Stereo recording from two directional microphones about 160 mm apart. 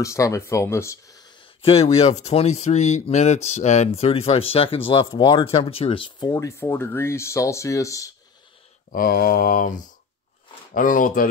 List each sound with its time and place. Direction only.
0.0 s speech: 20° left (ahead or behind)
1.6 s speech: 40° left (ahead or behind); by 8.1 s 20° left (ahead or behind)
8.9 s mantra: 65° left (ahead or behind)